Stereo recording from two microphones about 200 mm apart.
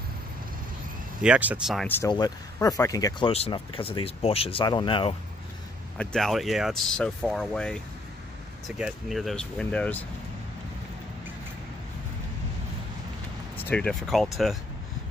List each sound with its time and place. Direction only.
1.2 s speech: 5° right (ahead or behind)
1.9 s speech: 15° left (ahead or behind)
5.9 s speech: centre (ahead or behind)
13.6 s speech: 5° left (ahead or behind)